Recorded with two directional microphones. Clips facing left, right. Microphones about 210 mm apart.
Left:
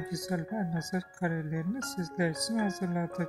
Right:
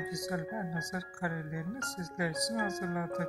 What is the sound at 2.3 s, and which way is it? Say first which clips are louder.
Speech: left 3 dB; 5° left (ahead or behind).